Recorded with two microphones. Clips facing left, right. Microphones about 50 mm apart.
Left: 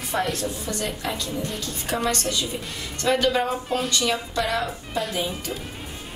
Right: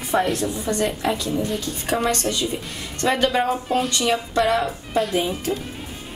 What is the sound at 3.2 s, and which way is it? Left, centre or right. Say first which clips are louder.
A woman's voice: right 2 dB; centre.